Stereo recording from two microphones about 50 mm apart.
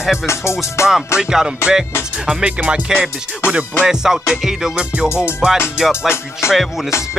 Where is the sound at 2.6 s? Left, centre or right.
Right.